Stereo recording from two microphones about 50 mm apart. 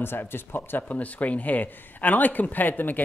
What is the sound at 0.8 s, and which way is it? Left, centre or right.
Speech, left.